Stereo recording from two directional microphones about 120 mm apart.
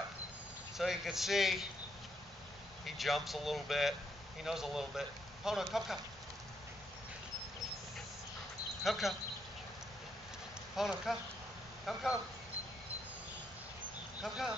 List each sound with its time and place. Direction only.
0.7 s speech: centre (ahead or behind)
2.8 s speech: centre (ahead or behind)
8.8 s speech: centre (ahead or behind)
10.8 s speech: 5° right (ahead or behind)
14.2 s speech: 5° right (ahead or behind)